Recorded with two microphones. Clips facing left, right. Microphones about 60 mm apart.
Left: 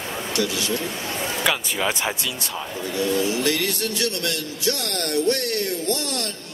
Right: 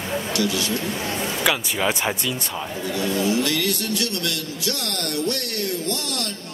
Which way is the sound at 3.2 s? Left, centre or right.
Right.